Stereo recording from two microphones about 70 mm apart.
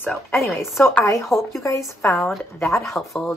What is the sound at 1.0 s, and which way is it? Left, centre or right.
Speech, left.